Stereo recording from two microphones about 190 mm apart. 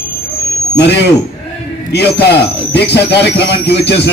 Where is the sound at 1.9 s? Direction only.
60° left (ahead or behind).